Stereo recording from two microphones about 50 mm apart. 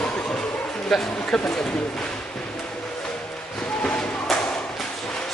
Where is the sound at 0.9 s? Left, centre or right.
Centre.